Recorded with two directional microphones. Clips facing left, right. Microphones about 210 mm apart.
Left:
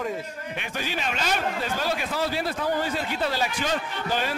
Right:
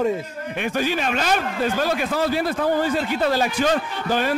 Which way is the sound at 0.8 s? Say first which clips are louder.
Right 5 dB; 50° right (ahead or behind).